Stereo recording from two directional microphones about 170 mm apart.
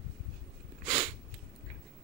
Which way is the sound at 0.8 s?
40° right (ahead or behind).